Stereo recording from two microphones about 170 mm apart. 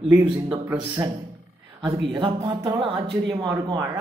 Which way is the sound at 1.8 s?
30° right (ahead or behind).